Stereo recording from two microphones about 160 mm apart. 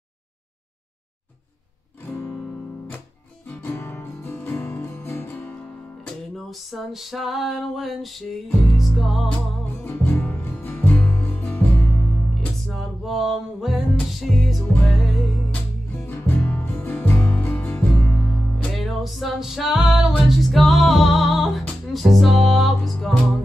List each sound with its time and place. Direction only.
2.0 s music: 15° left (ahead or behind)
3.4 s music: 15° left (ahead or behind)
9.8 s music: 10° left (ahead or behind)
16.0 s music: 15° left (ahead or behind)